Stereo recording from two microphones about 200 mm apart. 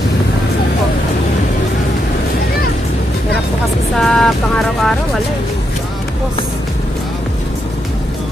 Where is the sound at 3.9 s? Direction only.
Centre (ahead or behind).